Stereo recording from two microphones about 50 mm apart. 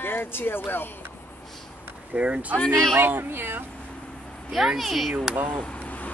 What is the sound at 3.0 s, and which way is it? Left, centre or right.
Speech, right.